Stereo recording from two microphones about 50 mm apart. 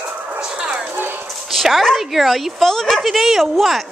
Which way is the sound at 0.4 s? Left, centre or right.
Centre.